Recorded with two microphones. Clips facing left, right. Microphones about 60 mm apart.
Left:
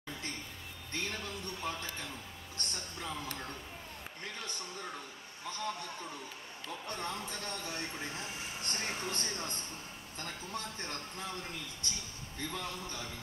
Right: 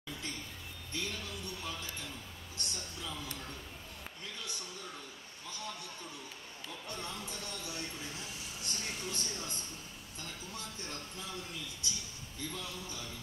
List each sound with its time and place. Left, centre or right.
0.9 s speech: left